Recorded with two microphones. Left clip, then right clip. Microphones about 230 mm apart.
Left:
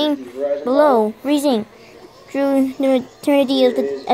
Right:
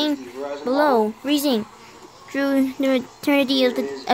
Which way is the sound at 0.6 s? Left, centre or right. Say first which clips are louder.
Left 4 dB; centre.